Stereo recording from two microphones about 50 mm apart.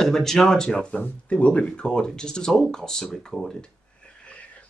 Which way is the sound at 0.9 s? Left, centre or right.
Left.